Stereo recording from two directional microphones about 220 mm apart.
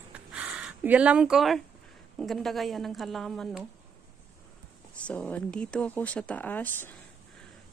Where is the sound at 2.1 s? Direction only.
Centre (ahead or behind).